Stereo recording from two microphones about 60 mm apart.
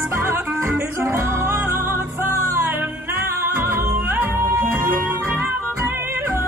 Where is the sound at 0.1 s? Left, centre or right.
Right.